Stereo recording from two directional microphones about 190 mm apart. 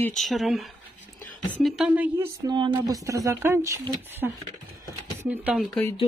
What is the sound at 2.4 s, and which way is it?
Speech, 25° right (ahead or behind).